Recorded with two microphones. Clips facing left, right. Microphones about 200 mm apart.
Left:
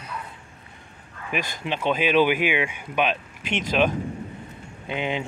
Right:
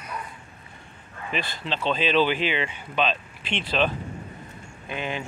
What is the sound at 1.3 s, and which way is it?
Speech, 15° left (ahead or behind).